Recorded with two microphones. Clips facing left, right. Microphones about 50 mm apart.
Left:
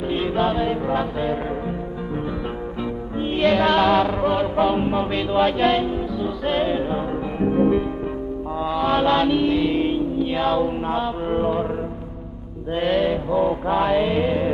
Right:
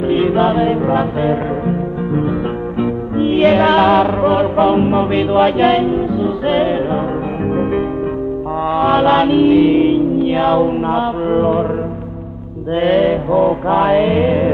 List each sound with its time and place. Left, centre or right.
0.1 s music: right
12.7 s music: right